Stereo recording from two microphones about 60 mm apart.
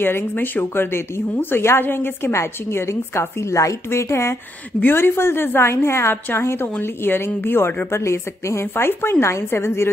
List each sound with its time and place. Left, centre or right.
0.0 s a woman's voice: left
4.7 s a woman's voice: left
7.9 s a woman's voice: left